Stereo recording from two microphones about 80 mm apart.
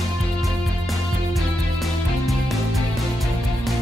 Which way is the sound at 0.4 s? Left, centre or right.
Centre.